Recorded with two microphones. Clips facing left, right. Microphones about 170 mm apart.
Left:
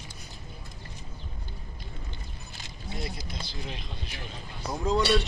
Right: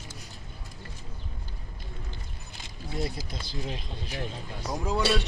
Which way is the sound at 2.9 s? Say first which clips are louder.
Right 4 dB; 40° right (ahead or behind).